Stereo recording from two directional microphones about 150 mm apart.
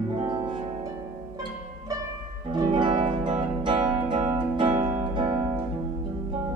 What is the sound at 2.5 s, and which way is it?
Music, 30° right (ahead or behind).